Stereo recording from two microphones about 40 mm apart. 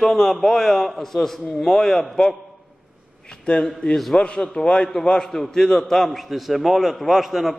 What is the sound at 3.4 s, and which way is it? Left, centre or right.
A man's voice, left.